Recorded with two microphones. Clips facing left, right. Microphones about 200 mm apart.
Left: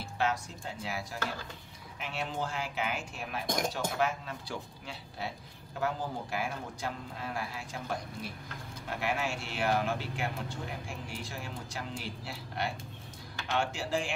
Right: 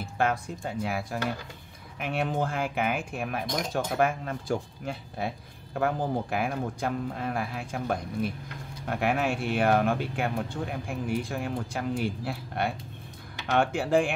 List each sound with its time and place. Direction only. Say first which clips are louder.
0.2 s speech: right 5 dB; 55° right (ahead or behind)